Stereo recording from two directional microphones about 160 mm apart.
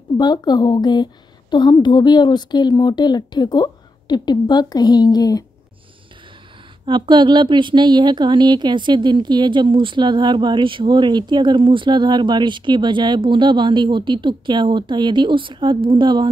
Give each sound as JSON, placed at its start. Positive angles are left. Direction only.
{"t": 0.2, "sound": "a woman's voice", "side_deg": 25}
{"t": 6.9, "sound": "speech", "side_deg": -30}